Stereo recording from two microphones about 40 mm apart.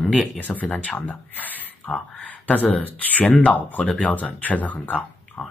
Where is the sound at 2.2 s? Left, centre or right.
Left.